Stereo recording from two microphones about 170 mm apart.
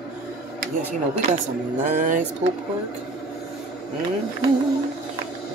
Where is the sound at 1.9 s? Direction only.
50° right (ahead or behind).